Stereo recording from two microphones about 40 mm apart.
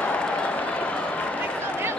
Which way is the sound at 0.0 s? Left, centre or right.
Left.